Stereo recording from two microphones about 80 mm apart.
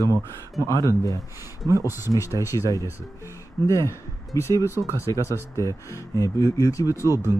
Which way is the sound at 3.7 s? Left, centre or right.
Left.